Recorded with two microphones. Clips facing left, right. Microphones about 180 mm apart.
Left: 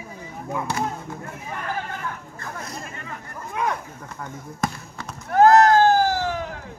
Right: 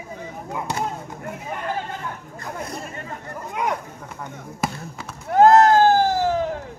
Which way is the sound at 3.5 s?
15° right (ahead or behind).